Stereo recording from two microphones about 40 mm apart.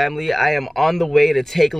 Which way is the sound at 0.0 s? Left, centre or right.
Centre.